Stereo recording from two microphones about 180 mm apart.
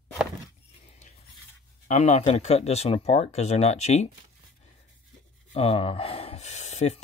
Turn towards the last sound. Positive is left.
turn(degrees=40)  # may be behind; listen again after turning